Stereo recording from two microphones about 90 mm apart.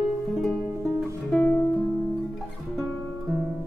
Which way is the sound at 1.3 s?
15° left (ahead or behind).